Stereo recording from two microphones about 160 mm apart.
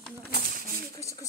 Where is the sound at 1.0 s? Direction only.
20° left (ahead or behind).